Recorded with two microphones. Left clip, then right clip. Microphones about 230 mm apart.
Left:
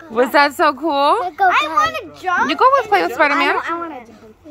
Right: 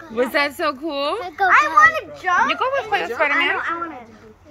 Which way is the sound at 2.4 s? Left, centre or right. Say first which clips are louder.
Left 6 dB; left.